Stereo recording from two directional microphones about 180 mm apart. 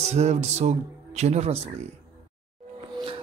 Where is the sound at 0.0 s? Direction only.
40° right (ahead or behind).